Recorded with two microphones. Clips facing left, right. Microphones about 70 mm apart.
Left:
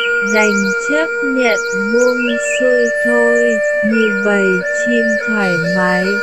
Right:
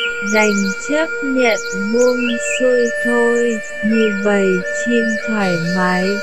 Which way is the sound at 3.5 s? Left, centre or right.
Left.